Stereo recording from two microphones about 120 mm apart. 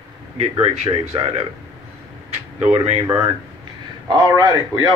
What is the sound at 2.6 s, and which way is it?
Speech, 55° right (ahead or behind).